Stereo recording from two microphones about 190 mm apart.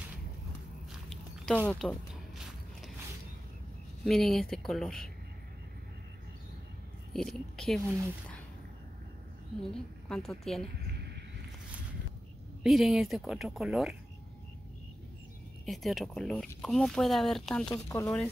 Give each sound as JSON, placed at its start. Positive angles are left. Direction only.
{"t": 1.1, "sound": "a sound", "side_deg": 0}
{"t": 4.0, "sound": "speech", "side_deg": 0}
{"t": 7.2, "sound": "speech", "side_deg": 0}
{"t": 9.5, "sound": "speech", "side_deg": 0}
{"t": 10.9, "sound": "a sound", "side_deg": -60}
{"t": 12.6, "sound": "speech", "side_deg": 0}
{"t": 15.6, "sound": "speech", "side_deg": 0}
{"t": 17.8, "sound": "speech", "side_deg": 15}